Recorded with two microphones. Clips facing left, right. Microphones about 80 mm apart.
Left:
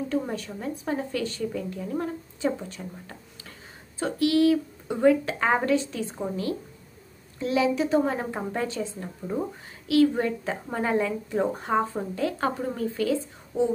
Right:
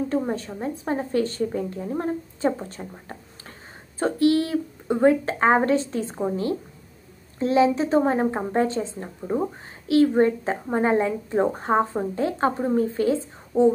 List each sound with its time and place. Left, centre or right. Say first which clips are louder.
0.3 s a woman's voice: right 4 dB; right